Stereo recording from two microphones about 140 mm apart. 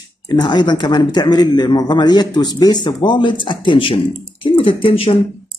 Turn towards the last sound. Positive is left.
turn(degrees=40)  # may be behind; listen again after turning